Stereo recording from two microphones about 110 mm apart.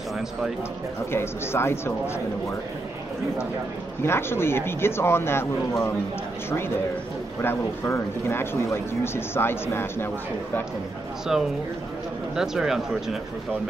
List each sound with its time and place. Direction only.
1.1 s speech: 20° left (ahead or behind)
4.0 s speech: 20° left (ahead or behind)
7.4 s speech: 25° left (ahead or behind)
11.3 s speech: 5° right (ahead or behind)